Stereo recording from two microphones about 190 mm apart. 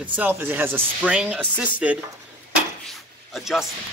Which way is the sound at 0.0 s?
10° right (ahead or behind).